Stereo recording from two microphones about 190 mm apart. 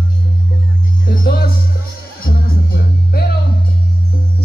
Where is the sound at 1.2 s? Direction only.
50° left (ahead or behind).